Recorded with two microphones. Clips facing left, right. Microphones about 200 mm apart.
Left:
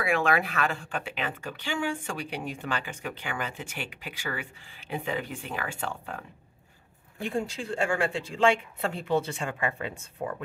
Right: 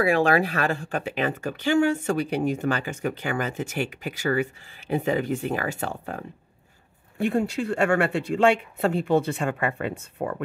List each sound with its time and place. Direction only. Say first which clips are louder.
0.0 s speech: right 6 dB; 35° right (ahead or behind)
7.2 s speech: right 7 dB; 60° right (ahead or behind)